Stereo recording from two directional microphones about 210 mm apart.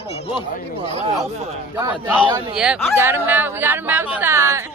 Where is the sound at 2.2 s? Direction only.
20° right (ahead or behind).